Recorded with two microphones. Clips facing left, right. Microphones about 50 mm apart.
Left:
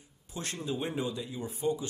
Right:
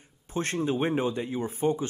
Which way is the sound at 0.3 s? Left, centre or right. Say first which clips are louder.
Right 8 dB; right.